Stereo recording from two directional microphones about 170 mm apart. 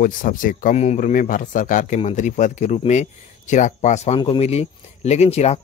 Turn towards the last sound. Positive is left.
turn(degrees=40)  # may be behind; listen again after turning